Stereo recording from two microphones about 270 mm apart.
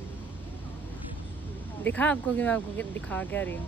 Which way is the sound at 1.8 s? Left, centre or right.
Centre.